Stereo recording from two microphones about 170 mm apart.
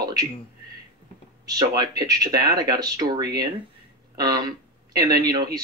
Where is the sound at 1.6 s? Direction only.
20° right (ahead or behind).